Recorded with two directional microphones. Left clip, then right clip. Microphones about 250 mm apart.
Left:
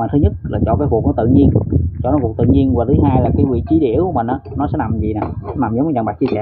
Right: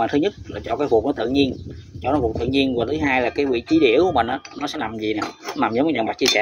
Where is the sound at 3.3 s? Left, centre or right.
Right.